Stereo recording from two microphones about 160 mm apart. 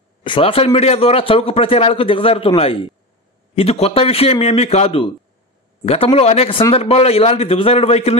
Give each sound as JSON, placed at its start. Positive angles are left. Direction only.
{"t": 0.2, "sound": "a man's voice", "side_deg": 35}